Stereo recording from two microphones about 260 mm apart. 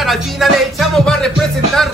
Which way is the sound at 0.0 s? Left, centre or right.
Centre.